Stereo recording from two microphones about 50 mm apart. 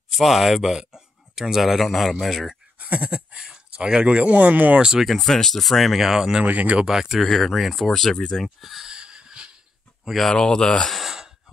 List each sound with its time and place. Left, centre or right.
0.1 s speech: centre
2.8 s speech: right
5.0 s speech: centre
6.4 s speech: right
6.8 s speech: centre
7.2 s speech: centre
8.2 s speech: centre
8.8 s wheeze: centre
10.0 s speech: centre
10.3 s speech: centre
10.9 s sigh: centre